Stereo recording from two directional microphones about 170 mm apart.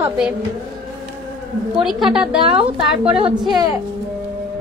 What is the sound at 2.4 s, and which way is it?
Speech, 30° right (ahead or behind).